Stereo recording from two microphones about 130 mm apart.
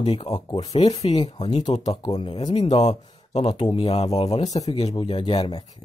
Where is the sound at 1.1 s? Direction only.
35° left (ahead or behind).